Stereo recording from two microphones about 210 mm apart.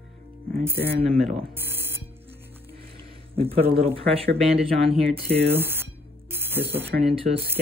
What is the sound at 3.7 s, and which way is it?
Speech, 25° right (ahead or behind).